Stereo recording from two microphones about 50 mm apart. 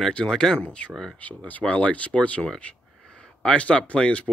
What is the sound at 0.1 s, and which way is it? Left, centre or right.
Speech, centre.